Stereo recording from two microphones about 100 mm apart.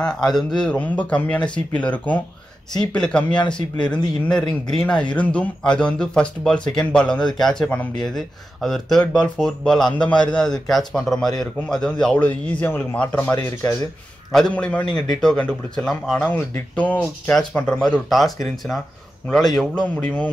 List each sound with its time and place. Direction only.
0.0 s speech: 5° left (ahead or behind)
0.7 s speech: 15° left (ahead or behind)
3.5 s speech: 50° left (ahead or behind)
3.9 s speech: 10° left (ahead or behind)
14.5 s speech: 15° left (ahead or behind)
19.8 s speech: 15° left (ahead or behind)